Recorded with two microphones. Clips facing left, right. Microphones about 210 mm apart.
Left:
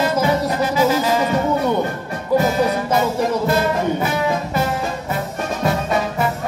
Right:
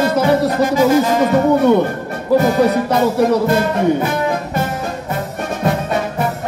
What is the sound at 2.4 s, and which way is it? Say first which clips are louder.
Music: right 4 dB; 65° right (ahead or behind).